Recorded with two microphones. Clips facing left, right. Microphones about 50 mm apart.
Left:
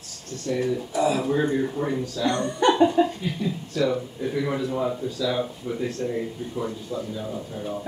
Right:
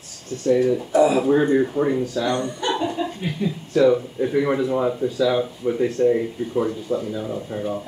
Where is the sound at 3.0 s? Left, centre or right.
Left.